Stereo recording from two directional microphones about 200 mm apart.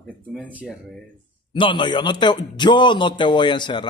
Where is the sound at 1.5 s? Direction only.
25° left (ahead or behind).